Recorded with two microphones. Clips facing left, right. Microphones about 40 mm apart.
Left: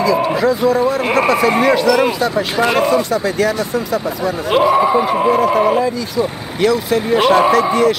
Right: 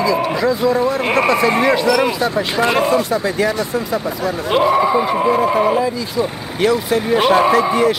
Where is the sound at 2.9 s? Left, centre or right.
Right.